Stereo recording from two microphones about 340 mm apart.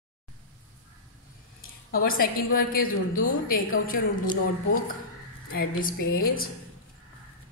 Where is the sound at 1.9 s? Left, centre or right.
Left.